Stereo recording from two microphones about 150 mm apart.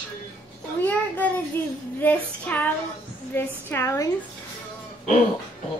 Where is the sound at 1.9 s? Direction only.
10° left (ahead or behind).